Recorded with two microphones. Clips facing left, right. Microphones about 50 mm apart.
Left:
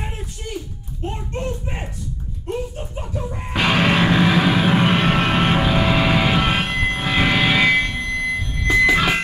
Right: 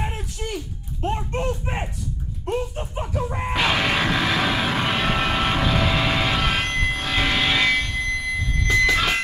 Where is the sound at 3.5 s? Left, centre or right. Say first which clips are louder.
Left 4 dB; centre.